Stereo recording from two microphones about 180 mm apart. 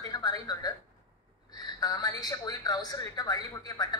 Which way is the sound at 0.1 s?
20° left (ahead or behind).